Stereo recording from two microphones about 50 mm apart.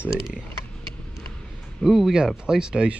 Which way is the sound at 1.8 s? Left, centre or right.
Centre.